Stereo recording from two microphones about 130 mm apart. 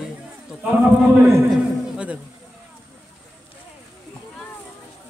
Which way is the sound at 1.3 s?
Centre (ahead or behind).